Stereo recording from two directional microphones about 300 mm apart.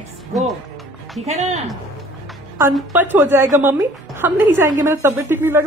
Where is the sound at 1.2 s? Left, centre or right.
Right.